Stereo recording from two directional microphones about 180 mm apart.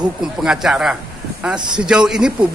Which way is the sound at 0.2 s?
5° right (ahead or behind).